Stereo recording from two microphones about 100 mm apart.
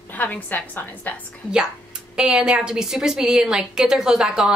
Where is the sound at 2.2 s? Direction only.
10° right (ahead or behind).